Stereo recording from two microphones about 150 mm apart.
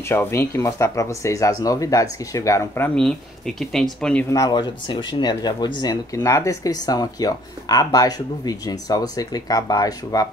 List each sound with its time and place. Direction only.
0.1 s speech: 15° left (ahead or behind)
3.0 s speech: 5° left (ahead or behind)
4.3 s speech: 25° left (ahead or behind)